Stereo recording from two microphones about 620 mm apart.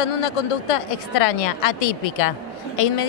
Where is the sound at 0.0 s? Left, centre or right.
Left.